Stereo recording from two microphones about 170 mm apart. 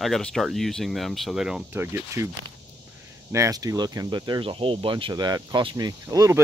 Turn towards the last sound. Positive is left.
turn(degrees=-20)  # may be behind; listen again after turning